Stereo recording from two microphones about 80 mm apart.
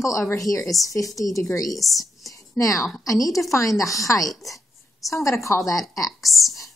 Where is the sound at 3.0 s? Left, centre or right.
Left.